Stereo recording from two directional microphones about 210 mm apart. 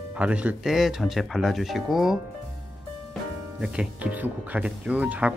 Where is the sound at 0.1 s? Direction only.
5° right (ahead or behind).